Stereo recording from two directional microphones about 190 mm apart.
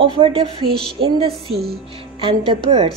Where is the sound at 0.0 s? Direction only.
30° right (ahead or behind).